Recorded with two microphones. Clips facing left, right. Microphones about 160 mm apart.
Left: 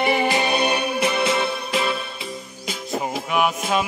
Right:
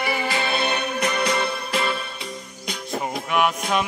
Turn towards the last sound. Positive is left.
turn(degrees=5)  # may be behind; listen again after turning